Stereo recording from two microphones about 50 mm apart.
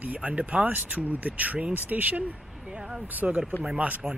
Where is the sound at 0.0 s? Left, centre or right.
Right.